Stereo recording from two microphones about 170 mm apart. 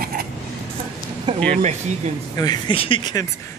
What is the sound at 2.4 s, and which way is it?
Speech, 25° left (ahead or behind).